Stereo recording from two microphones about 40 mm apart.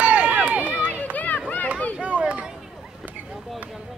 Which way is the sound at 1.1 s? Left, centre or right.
Left.